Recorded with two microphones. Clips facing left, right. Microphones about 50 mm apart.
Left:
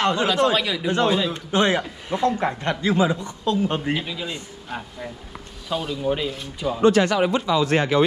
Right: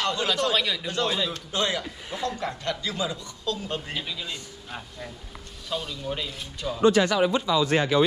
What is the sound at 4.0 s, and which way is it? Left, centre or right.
Speech, centre.